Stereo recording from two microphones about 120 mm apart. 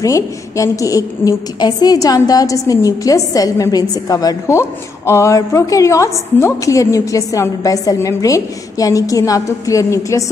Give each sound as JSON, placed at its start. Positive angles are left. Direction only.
{"t": 0.0, "sound": "a woman's voice", "side_deg": 25}